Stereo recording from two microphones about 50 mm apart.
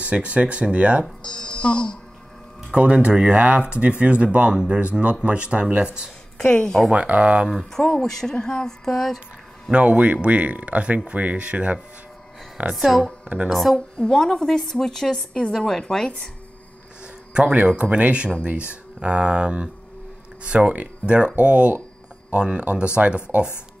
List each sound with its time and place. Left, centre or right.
0.0 s speech: right
1.2 s speech: centre
2.7 s speech: right
6.3 s speech: centre
6.9 s speech: right
7.8 s a woman's voice: centre
9.7 s speech: right
12.7 s a woman's voice: centre
13.7 s a woman's voice: centre
17.3 s speech: centre